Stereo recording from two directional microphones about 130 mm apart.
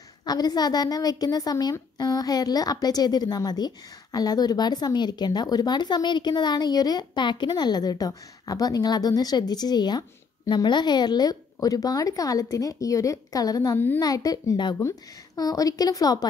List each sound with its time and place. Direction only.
0.2 s a woman's voice: 30° left (ahead or behind)
13.7 s a child's voice: 15° left (ahead or behind)
14.0 s a woman's voice: 30° left (ahead or behind)